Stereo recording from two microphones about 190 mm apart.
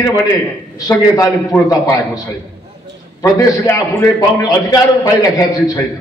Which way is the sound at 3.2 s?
20° left (ahead or behind).